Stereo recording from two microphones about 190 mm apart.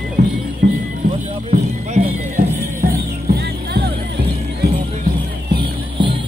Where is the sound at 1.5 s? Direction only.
35° right (ahead or behind).